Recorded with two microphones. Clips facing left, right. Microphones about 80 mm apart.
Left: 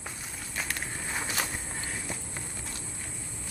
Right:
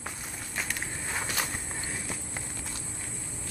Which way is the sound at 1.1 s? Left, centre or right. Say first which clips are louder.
Even; centre.